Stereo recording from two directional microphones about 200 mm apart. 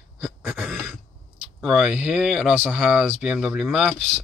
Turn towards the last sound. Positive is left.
turn(degrees=0)  # may be behind; listen again after turning